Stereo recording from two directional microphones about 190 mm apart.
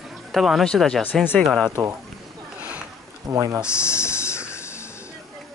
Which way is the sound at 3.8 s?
15° left (ahead or behind).